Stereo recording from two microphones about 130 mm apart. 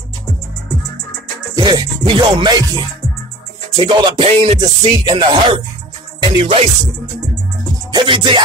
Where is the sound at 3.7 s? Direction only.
35° right (ahead or behind).